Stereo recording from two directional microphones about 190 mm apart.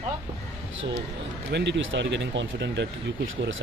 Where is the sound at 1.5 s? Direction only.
70° right (ahead or behind).